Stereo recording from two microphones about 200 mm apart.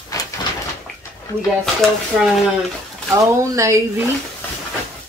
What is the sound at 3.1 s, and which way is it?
Speech, 15° right (ahead or behind).